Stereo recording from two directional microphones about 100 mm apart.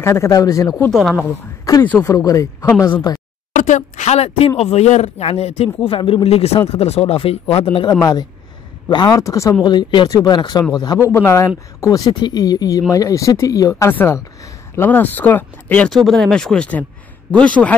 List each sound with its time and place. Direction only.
0.0 s speech: 25° left (ahead or behind)
1.7 s a sound: 35° left (ahead or behind)
2.0 s speech: 35° left (ahead or behind)
4.1 s speech: 90° left; by 6.1 s 65° left (ahead or behind)
6.2 s speech: 90° left; by 7.9 s 60° left (ahead or behind)
7.9 s speech: 40° left (ahead or behind)
11.0 s speech: 25° left (ahead or behind)
13.8 s speech: 25° left (ahead or behind)
15.9 s speech: centre (ahead or behind)